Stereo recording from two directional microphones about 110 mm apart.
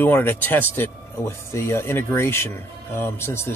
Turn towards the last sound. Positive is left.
turn(degrees=20)  # may be behind; listen again after turning